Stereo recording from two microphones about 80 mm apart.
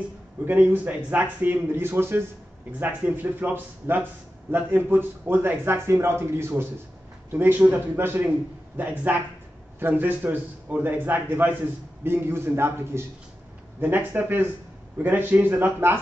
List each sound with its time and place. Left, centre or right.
0.5 s a man's voice: centre